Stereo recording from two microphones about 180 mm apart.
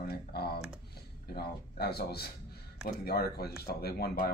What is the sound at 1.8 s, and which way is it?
A man's voice, 60° left (ahead or behind).